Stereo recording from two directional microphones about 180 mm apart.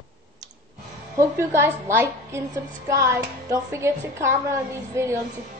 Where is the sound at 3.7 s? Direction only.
15° right (ahead or behind).